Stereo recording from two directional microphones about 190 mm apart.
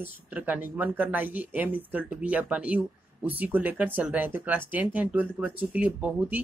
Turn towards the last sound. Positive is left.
turn(degrees=-10)  # may be behind; listen again after turning